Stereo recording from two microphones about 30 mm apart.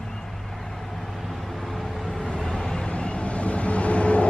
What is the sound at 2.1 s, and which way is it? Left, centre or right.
Vehicle, centre.